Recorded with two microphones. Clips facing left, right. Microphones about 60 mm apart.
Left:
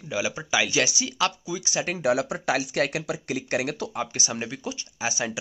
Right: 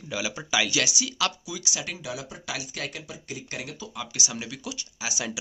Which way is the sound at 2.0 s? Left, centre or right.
Left.